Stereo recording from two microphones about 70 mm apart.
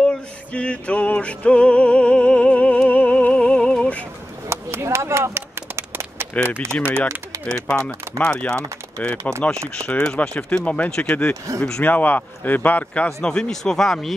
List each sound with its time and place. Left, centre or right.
0.0 s music: centre
4.5 s a sound: right
6.7 s a man's voice: left
7.4 s a man's voice: centre